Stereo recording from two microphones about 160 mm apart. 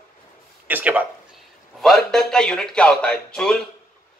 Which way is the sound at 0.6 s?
10° right (ahead or behind).